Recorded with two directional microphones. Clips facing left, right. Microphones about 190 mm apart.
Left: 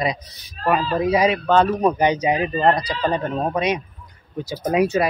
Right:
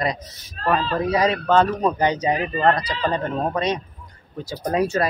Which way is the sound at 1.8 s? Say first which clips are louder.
Left 2 dB; 15° left (ahead or behind).